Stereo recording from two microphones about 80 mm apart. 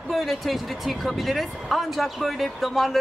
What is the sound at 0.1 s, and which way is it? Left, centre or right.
Speech, centre.